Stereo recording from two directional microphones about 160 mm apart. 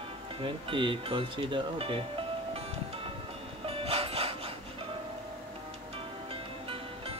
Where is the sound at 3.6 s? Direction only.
35° right (ahead or behind).